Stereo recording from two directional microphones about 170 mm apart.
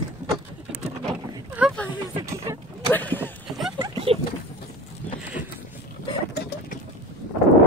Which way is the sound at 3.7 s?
30° right (ahead or behind).